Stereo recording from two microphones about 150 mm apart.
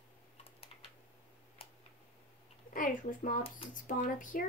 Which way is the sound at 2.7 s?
65° left (ahead or behind).